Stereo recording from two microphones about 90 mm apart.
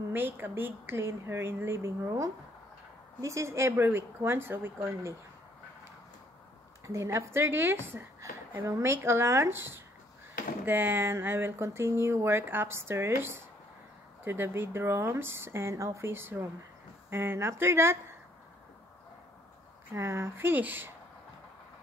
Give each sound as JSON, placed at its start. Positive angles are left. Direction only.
{"t": 0.1, "sound": "a woman's voice", "side_deg": -20}
{"t": 6.9, "sound": "a woman's voice", "side_deg": -35}
{"t": 19.9, "sound": "a woman's voice", "side_deg": -30}